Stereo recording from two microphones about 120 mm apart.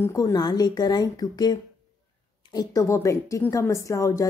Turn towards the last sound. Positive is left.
turn(degrees=25)  # may be behind; listen again after turning